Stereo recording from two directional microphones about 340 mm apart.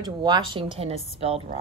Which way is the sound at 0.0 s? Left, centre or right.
Centre.